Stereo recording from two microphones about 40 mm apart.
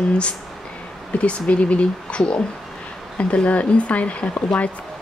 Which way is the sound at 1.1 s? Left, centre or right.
Left.